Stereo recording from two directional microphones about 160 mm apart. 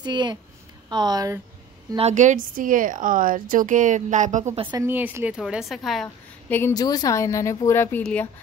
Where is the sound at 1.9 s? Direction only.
45° right (ahead or behind).